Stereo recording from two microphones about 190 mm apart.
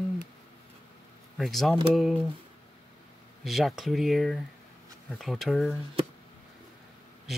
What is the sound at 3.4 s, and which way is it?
Mantra, centre (ahead or behind).